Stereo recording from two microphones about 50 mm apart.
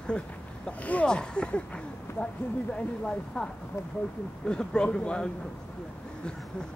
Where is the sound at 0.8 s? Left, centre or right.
Left.